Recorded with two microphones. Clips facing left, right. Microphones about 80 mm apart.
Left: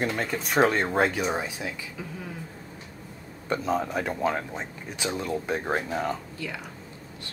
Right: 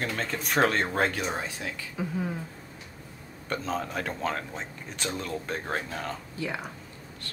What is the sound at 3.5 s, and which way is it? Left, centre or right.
Speech, centre.